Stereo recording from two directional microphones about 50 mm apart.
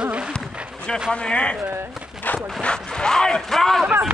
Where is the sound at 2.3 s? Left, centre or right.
Left.